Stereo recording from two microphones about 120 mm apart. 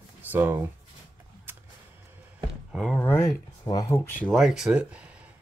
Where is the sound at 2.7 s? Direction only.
10° left (ahead or behind).